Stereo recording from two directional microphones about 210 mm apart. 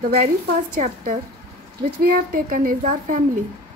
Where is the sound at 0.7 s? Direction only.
35° right (ahead or behind).